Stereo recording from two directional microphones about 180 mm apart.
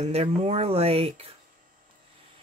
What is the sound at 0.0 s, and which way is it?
Speech, 35° right (ahead or behind).